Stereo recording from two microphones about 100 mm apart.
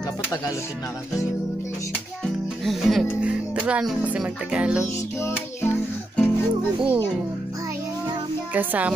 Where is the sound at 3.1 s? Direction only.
10° right (ahead or behind).